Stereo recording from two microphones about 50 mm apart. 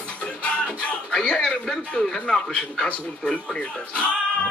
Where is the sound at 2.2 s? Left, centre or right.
Centre.